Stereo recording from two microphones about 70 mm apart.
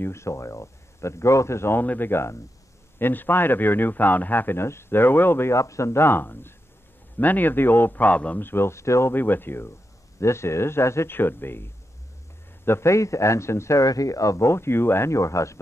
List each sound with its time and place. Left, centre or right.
0.0 s a man's voice: left
5.5 s a man's voice: left; by 8.5 s centre
8.5 s speech: left
9.1 s a man's voice: left